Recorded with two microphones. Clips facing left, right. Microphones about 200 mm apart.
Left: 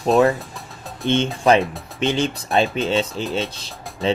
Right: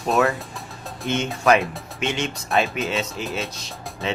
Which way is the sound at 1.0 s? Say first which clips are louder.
Left 5 dB; centre (ahead or behind).